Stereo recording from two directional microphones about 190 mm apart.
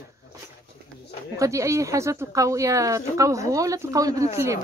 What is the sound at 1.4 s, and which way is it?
Speech, 15° right (ahead or behind).